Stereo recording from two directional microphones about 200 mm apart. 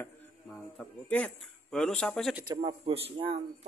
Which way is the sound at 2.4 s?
25° right (ahead or behind).